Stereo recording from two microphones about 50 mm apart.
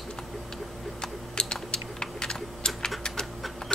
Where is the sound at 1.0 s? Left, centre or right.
Centre.